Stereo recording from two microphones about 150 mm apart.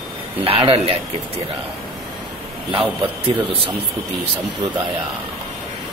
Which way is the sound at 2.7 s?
35° right (ahead or behind).